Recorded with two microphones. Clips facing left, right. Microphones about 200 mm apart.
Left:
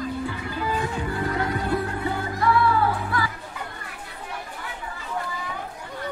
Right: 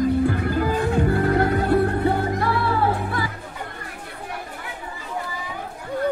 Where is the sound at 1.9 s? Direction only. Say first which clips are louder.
Right 7 dB; 40° right (ahead or behind).